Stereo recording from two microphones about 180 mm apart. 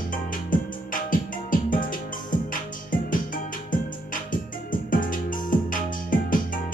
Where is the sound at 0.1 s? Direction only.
50° left (ahead or behind).